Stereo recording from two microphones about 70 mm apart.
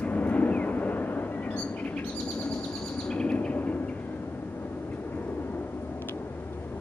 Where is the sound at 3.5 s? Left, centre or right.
Left.